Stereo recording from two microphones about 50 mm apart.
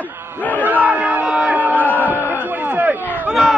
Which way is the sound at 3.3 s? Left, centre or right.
Centre.